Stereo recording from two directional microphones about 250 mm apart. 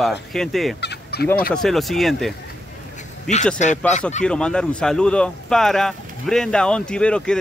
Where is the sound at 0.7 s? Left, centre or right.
Left.